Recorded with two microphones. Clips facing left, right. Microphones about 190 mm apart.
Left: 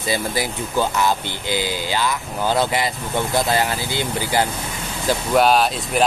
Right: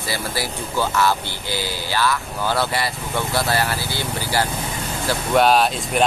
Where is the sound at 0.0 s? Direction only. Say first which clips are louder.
Left 3 dB; 20° left (ahead or behind).